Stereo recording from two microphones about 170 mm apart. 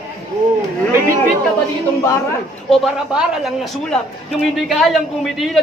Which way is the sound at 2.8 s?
5° right (ahead or behind).